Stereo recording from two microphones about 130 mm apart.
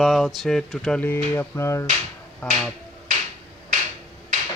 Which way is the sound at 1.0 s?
20° left (ahead or behind).